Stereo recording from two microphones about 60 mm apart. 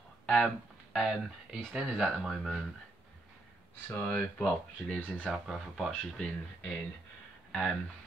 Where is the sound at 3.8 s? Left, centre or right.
Left.